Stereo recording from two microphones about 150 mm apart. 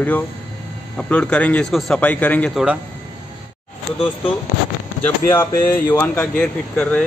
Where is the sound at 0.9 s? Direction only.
5° left (ahead or behind).